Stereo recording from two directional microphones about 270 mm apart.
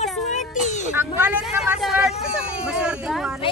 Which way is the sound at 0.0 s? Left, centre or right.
Left.